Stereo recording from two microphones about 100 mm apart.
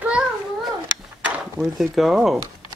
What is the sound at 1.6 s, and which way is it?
Speech, centre (ahead or behind).